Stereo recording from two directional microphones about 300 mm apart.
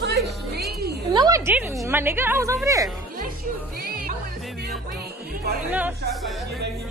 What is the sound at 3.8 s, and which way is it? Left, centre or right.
Music, right.